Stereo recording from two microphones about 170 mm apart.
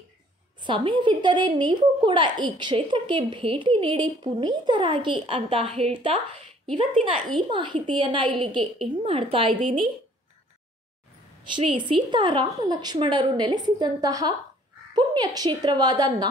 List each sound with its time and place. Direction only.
0.7 s a woman's voice: 30° right (ahead or behind)
11.9 s a woman's voice: 25° right (ahead or behind)